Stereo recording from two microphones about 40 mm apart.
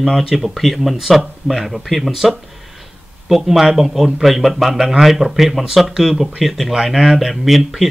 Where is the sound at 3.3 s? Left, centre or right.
Centre.